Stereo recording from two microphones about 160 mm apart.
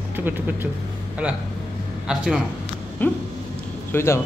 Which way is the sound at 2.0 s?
5° right (ahead or behind).